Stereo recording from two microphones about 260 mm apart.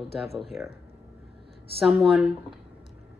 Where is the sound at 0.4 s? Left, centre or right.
Centre.